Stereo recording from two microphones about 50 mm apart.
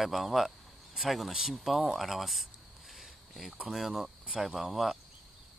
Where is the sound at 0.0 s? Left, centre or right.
Centre.